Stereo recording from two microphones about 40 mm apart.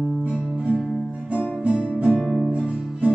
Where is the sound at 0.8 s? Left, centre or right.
Centre.